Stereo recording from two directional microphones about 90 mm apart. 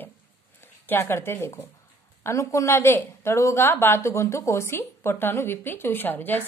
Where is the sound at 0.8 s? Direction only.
25° left (ahead or behind).